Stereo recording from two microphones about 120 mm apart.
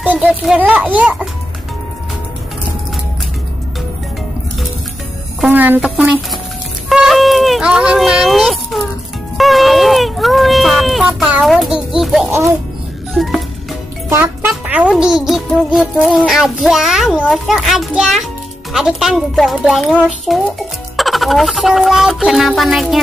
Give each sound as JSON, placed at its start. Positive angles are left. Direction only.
{"t": 0.0, "sound": "a child's voice", "side_deg": -10}
{"t": 5.5, "sound": "a child's voice", "side_deg": -15}
{"t": 6.9, "sound": "a sound", "side_deg": 0}
{"t": 11.4, "sound": "a child's voice", "side_deg": 0}
{"t": 13.1, "sound": "music", "side_deg": 0}
{"t": 14.1, "sound": "music", "side_deg": -20}
{"t": 14.7, "sound": "a child's voice", "side_deg": -10}